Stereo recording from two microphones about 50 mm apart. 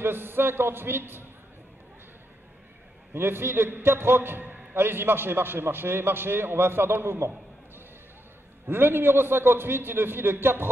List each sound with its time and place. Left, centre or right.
0.0 s a man's voice: right
3.1 s a man's voice: right